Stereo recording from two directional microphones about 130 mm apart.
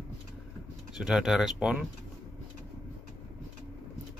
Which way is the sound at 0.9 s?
5° right (ahead or behind).